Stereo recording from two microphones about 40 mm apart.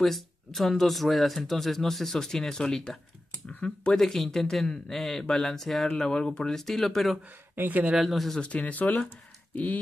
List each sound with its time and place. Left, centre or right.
0.0 s speech: centre; by 2.9 s left
3.9 s speech: centre
5.9 s speech: centre
6.6 s speech: centre
7.5 s speech: right
7.9 s speech: centre
8.5 s speech: left